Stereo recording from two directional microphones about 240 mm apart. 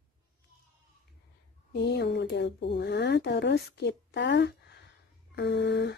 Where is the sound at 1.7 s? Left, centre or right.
Left.